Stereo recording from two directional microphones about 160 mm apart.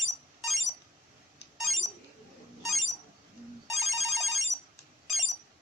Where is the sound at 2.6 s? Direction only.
Centre (ahead or behind).